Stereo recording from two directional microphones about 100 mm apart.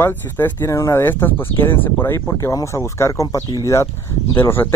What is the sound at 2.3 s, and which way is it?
Speech, 35° left (ahead or behind).